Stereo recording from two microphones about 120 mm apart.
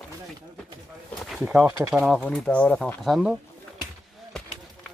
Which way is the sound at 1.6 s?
30° right (ahead or behind).